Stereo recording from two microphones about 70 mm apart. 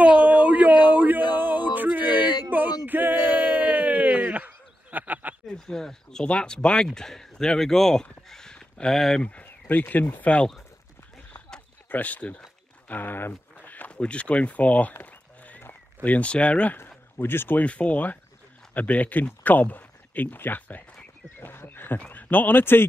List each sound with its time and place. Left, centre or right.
0.0 s a sound: right
2.5 s male singing: right
2.9 s a sound: right
5.5 s speech: centre
9.2 s speech: left
11.9 s speech: left
16.7 s speech: left